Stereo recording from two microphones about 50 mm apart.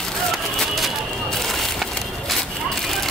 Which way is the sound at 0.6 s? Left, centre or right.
Centre.